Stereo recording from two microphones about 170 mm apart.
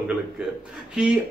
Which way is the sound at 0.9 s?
5° right (ahead or behind).